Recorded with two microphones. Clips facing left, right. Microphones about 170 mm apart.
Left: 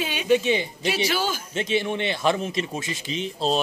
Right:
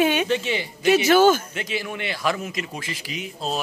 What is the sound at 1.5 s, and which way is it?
Speech, 25° left (ahead or behind).